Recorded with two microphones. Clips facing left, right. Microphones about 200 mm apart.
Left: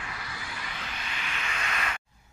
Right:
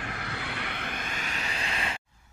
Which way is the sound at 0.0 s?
60° right (ahead or behind).